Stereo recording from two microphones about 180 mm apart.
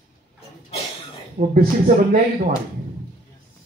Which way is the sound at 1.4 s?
50° right (ahead or behind).